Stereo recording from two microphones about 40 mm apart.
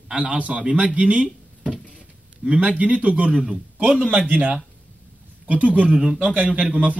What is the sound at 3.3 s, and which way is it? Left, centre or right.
Speech, right.